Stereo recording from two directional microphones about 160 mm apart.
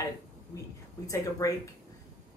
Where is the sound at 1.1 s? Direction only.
20° left (ahead or behind).